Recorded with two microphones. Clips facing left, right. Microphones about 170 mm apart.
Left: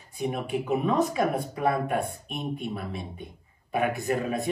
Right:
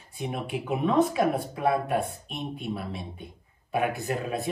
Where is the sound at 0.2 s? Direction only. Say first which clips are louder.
Left 3 dB; centre (ahead or behind).